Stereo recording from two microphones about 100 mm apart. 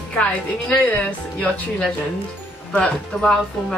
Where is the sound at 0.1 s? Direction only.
15° left (ahead or behind).